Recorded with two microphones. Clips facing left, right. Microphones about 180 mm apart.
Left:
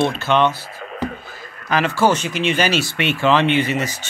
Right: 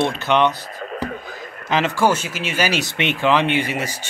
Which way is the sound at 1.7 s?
20° right (ahead or behind).